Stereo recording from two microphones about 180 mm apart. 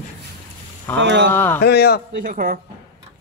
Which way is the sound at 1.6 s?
60° left (ahead or behind).